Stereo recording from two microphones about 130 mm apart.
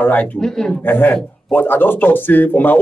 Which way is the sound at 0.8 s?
15° left (ahead or behind).